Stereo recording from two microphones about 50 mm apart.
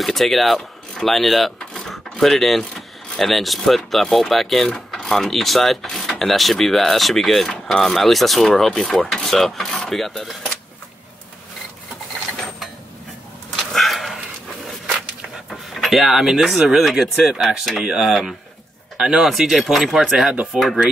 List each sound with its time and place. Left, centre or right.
0.0 s speech: centre
8.5 s filing: centre
13.7 s a sound: centre
15.5 s speech: centre
19.2 s speech: centre